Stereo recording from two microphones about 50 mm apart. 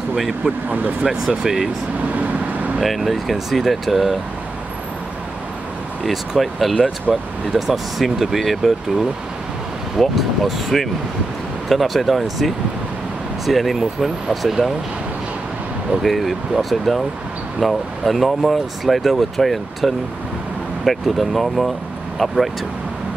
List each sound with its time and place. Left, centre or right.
1.0 s speech: centre
2.8 s speech: centre
6.0 s speech: centre
16.0 s speech: centre